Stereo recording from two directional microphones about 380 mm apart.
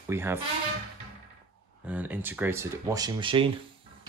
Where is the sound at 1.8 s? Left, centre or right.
Centre.